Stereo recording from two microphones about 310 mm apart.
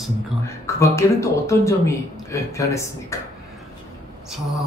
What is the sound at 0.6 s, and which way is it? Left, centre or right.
A man's voice, centre.